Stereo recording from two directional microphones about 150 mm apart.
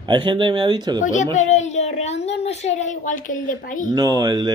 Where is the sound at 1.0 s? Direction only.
55° left (ahead or behind).